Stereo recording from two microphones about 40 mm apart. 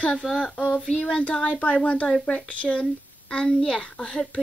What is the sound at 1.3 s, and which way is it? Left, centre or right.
A child's voice, left.